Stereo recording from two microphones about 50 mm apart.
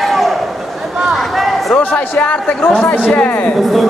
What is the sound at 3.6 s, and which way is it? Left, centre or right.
Speech, centre.